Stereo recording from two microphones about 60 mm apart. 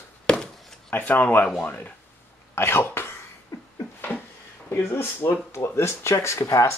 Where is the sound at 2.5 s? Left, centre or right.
Left.